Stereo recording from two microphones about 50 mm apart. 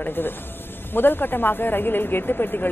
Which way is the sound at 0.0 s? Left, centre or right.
Left.